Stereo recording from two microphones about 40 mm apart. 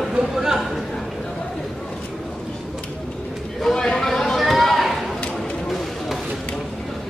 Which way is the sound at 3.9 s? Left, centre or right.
Centre.